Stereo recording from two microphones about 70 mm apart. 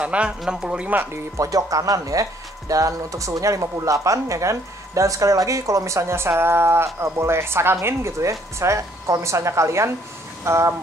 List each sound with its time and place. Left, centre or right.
0.0 s speech: centre
1.3 s speech: right